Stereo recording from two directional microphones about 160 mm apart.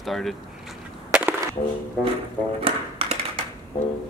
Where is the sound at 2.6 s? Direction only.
35° right (ahead or behind).